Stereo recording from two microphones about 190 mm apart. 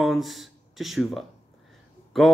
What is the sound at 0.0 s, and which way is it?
A man's voice, centre (ahead or behind).